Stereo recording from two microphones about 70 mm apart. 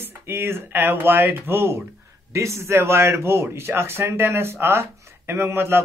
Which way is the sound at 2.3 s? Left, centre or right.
Right.